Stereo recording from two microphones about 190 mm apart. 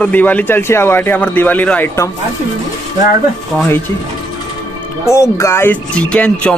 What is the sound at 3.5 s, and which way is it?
Speech, 10° left (ahead or behind).